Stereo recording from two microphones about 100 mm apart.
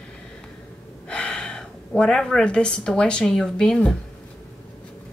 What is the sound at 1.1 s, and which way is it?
A woman's voice, 10° left (ahead or behind).